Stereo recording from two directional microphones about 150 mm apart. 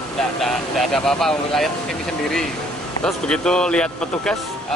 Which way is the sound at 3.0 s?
5° left (ahead or behind).